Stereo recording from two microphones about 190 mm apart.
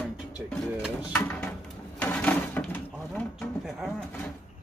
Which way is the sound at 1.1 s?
10° left (ahead or behind).